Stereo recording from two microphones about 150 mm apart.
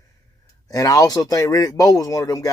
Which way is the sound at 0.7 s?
25° left (ahead or behind).